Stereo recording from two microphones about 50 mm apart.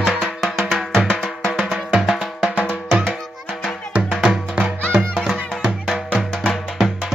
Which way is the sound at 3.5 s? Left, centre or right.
Centre.